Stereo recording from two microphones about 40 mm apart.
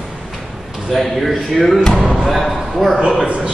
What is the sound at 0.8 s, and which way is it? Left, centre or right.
Speech, centre.